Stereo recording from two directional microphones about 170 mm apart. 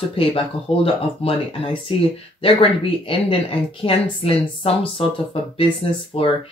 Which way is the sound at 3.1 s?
35° left (ahead or behind).